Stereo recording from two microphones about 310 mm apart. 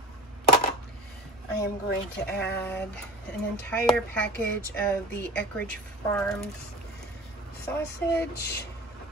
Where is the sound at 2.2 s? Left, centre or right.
Left.